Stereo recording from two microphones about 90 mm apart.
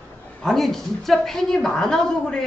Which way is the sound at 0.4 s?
Centre (ahead or behind).